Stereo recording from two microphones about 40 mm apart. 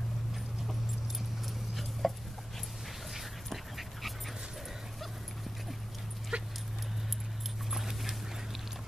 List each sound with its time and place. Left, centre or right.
1.8 s a sound: centre
3.2 s dog: centre
6.3 s dog: right
7.7 s dog: centre